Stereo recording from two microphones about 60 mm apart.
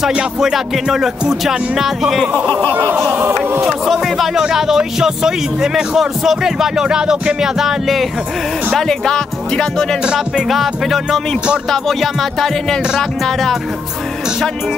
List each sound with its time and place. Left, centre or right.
0.4 s speech: centre
1.4 s music: centre
2.7 s a sound: right
3.6 s speech: centre
8.7 s speech: centre
10.1 s music: centre